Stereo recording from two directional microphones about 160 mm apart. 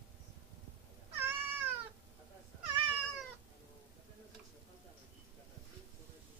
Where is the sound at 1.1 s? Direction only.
15° right (ahead or behind).